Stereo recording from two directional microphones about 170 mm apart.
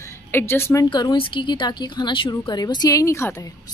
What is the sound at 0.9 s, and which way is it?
A woman's voice, 25° left (ahead or behind).